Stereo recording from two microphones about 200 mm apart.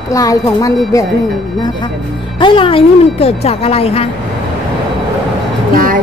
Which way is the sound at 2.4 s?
25° left (ahead or behind).